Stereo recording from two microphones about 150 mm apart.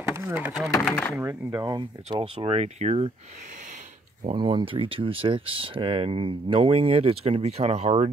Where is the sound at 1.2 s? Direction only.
20° right (ahead or behind).